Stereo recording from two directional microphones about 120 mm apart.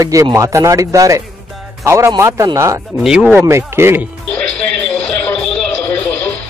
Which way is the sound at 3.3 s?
20° right (ahead or behind).